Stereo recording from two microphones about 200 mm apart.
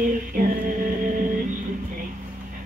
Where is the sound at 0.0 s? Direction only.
45° right (ahead or behind).